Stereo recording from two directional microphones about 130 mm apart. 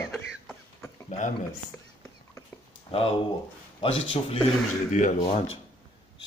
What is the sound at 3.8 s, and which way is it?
Speech, 45° left (ahead or behind).